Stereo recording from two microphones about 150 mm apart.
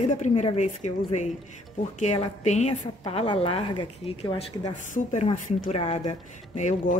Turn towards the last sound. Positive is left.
turn(degrees=55)  # may be behind; listen again after turning